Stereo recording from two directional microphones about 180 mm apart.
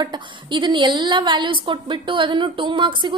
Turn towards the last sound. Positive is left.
turn(degrees=-25)  # may be behind; listen again after turning